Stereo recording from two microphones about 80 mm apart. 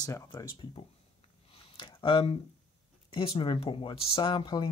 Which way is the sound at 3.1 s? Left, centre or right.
Left.